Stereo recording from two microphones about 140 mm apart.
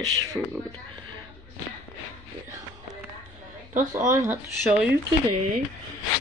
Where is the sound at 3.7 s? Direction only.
65° right (ahead or behind).